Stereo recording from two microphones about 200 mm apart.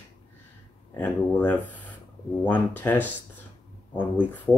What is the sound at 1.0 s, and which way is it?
Speech, 10° left (ahead or behind).